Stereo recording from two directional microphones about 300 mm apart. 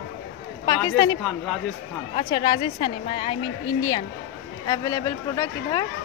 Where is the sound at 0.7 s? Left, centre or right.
Centre.